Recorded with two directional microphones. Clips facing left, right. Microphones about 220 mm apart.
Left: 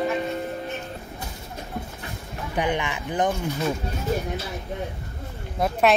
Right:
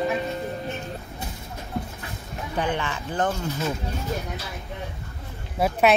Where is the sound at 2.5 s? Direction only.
15° left (ahead or behind).